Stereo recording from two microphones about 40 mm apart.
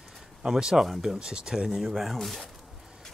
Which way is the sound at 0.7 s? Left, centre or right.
Centre.